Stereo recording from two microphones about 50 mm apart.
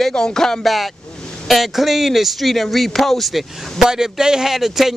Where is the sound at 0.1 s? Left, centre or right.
Centre.